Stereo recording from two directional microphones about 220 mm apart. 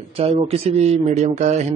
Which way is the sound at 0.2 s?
25° right (ahead or behind).